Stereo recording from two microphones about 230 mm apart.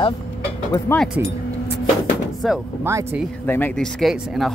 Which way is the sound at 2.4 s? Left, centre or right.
Centre.